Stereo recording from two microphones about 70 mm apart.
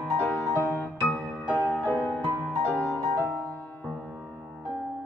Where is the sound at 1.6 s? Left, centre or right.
Left.